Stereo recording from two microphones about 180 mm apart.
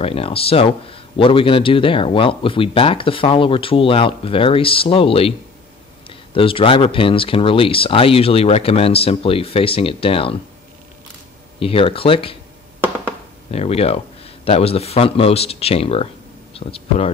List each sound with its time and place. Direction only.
0.0 s speech: 30° left (ahead or behind)
11.6 s speech: 30° left (ahead or behind)
13.5 s speech: 35° left (ahead or behind)